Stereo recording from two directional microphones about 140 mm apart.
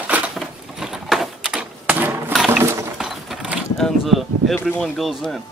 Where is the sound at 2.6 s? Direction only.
20° right (ahead or behind).